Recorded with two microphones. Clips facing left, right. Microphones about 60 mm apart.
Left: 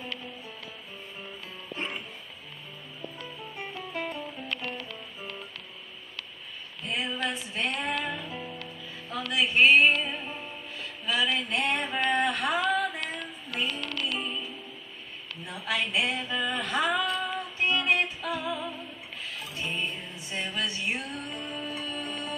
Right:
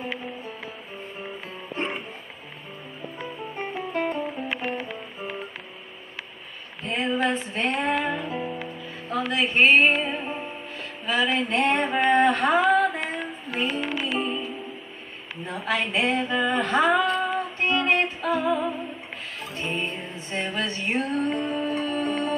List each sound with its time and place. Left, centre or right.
1.8 s music: right
3.3 s music: right
4.6 s music: centre
6.8 s a sound: right
7.2 s female singing: right
8.0 s music: right
9.3 s female singing: right
9.9 s music: right
11.1 s female singing: right
13.7 s music: centre
14.1 s music: right
15.4 s female singing: right
19.4 s music: right